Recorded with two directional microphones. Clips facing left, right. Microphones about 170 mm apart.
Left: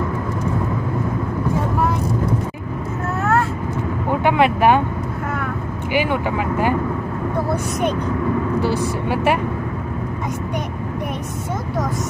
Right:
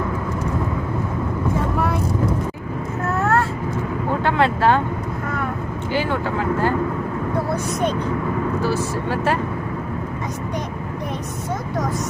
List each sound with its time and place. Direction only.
4.2 s speech: 15° left (ahead or behind)
5.9 s speech: 15° left (ahead or behind)
8.6 s speech: 15° left (ahead or behind)